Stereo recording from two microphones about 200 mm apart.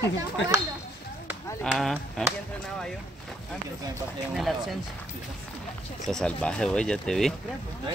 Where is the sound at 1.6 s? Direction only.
Centre (ahead or behind).